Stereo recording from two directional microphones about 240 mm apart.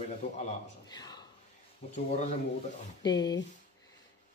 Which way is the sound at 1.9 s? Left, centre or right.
Left.